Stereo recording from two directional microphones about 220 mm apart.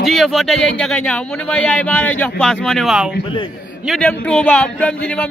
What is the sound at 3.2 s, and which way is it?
Speech, 20° left (ahead or behind).